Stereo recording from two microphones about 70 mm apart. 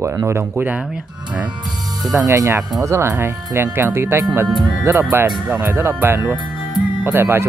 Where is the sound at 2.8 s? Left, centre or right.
Right.